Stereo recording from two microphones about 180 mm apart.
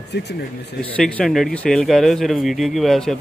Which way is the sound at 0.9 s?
5° left (ahead or behind).